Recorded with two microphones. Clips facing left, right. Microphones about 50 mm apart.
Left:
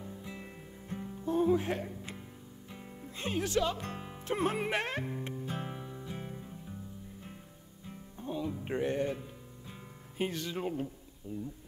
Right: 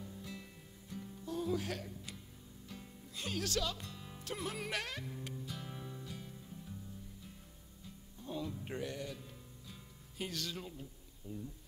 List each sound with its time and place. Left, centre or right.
0.0 s music: left
3.8 s speech: left
4.1 s music: left
4.4 s speech: left
5.8 s music: left
6.1 s music: left
8.3 s music: left
10.6 s a man's voice: left
11.3 s speech: left